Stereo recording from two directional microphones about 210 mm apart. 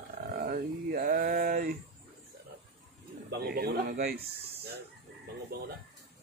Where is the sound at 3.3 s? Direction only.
50° right (ahead or behind).